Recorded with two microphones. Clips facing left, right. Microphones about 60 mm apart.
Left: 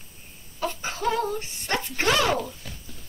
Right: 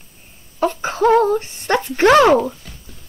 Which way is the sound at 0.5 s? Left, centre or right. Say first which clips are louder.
Right 11 dB; right.